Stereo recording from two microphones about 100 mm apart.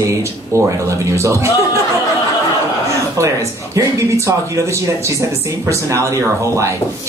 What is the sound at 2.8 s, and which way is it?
Speech, 30° right (ahead or behind).